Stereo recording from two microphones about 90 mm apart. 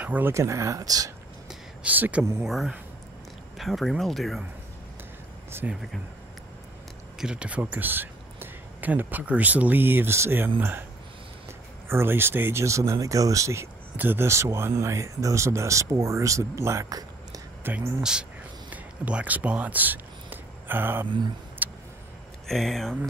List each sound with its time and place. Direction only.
0.0 s speech: 20° right (ahead or behind)
0.3 s speech: 35° right (ahead or behind)
1.5 s a sound: 15° right (ahead or behind)
2.4 s speech: centre (ahead or behind)
5.5 s speech: 25° right (ahead or behind)
7.2 s speech: 10° right (ahead or behind); by 10.5 s 25° right (ahead or behind)
11.9 s speech: 25° right (ahead or behind)
13.9 s speech: 25° right (ahead or behind)
18.7 s a sound: 15° right (ahead or behind)
21.6 s vehicle: 20° right (ahead or behind)
22.5 s speech: 5° left (ahead or behind)